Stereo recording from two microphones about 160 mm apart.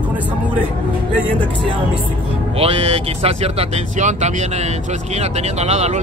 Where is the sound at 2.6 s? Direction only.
40° right (ahead or behind).